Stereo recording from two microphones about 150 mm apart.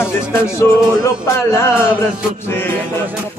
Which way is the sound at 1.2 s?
15° left (ahead or behind).